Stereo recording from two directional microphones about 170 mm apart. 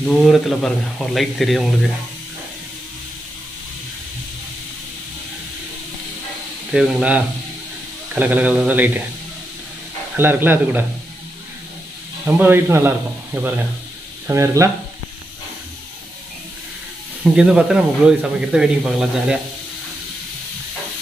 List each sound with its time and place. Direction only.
0.0 s speech: centre (ahead or behind)
6.7 s speech: 5° right (ahead or behind)
10.1 s speech: 10° right (ahead or behind)
12.3 s speech: 10° right (ahead or behind)
17.2 s speech: 5° right (ahead or behind)